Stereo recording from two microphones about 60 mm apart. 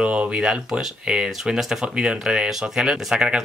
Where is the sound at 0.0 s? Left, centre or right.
Right.